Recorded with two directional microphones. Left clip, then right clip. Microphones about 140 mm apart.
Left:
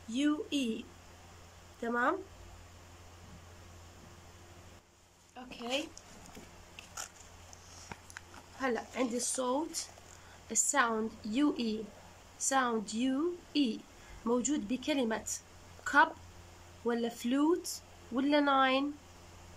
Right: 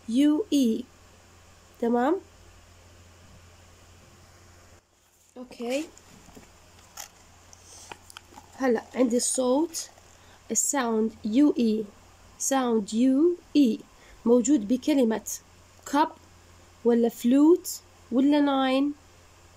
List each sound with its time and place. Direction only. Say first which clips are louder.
0.1 s speech: right 10 dB; 35° right (ahead or behind)
1.8 s speech: right 7 dB; 35° right (ahead or behind)
5.3 s speech: right 6 dB; 30° right (ahead or behind)
8.5 s a woman's voice: right 9 dB; 35° right (ahead or behind)